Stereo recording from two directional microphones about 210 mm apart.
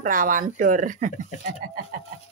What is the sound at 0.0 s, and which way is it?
A woman's voice, 40° right (ahead or behind).